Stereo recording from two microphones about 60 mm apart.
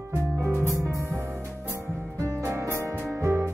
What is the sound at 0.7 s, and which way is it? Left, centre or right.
Music, right.